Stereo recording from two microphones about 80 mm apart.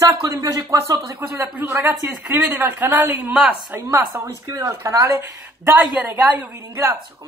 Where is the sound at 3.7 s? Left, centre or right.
Right.